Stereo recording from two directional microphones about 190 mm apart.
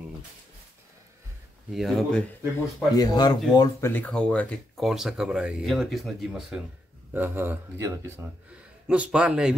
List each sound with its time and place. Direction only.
1.7 s speech: centre (ahead or behind)
2.9 s speech: 20° left (ahead or behind); by 9.6 s 5° right (ahead or behind)